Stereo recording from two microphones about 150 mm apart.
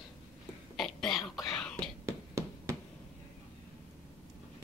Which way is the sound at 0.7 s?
Centre (ahead or behind).